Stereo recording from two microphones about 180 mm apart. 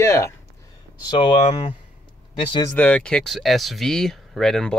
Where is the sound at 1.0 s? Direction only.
25° left (ahead or behind).